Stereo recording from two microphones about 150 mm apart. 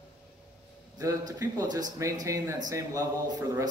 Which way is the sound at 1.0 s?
25° right (ahead or behind).